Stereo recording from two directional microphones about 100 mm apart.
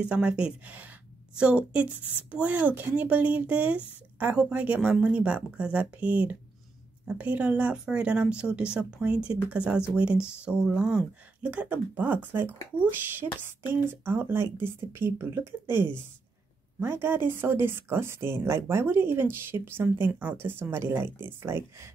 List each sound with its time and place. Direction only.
0.0 s speech: 10° right (ahead or behind); by 21.9 s 25° right (ahead or behind)